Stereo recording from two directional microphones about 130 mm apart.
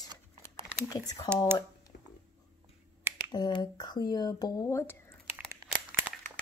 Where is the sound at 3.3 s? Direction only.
35° left (ahead or behind).